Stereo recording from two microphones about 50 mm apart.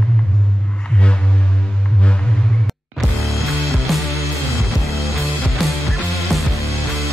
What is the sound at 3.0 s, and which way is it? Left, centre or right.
Music, centre.